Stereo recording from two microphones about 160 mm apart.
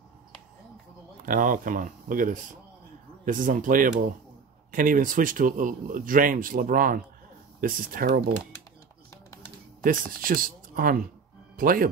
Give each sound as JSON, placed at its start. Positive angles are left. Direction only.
{"t": 1.2, "sound": "speech", "side_deg": -55}
{"t": 9.8, "sound": "speech", "side_deg": -60}